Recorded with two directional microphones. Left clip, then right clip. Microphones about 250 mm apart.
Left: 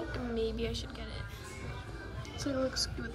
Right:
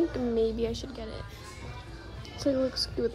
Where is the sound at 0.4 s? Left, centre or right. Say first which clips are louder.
Right 6 dB; centre.